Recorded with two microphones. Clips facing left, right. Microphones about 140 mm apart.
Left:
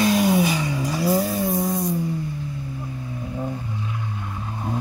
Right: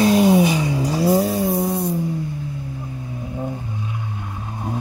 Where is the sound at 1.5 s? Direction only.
30° right (ahead or behind).